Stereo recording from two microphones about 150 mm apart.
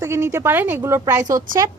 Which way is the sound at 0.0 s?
20° right (ahead or behind).